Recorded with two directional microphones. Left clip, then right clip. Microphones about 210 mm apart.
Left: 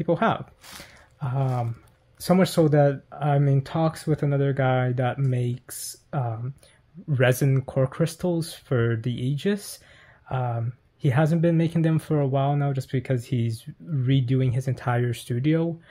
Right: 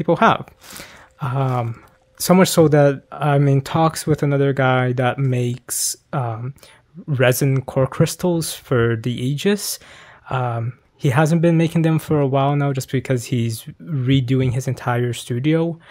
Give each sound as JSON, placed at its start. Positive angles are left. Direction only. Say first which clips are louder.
{"t": 0.0, "sound": "speech", "louder": "right 8 dB", "side_deg": -30}